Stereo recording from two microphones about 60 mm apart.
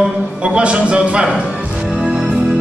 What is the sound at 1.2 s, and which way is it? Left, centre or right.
Music, centre.